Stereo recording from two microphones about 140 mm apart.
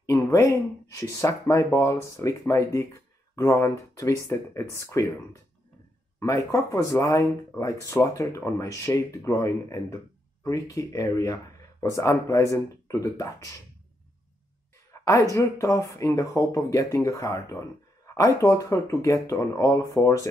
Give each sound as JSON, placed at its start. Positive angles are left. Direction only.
{"t": 0.0, "sound": "speech", "side_deg": 20}
{"t": 6.1, "sound": "speech", "side_deg": 20}
{"t": 14.9, "sound": "a sound", "side_deg": 25}
{"t": 15.3, "sound": "speech", "side_deg": 20}